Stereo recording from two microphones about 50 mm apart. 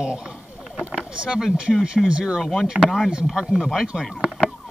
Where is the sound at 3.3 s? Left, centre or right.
Centre.